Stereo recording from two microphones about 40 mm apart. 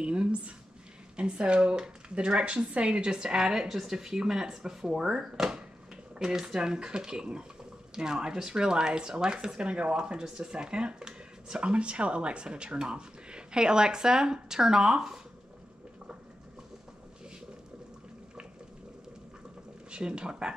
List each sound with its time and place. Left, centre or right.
0.0 s a sound: right
1.1 s speech: right
3.6 s speech: centre
19.9 s speech: right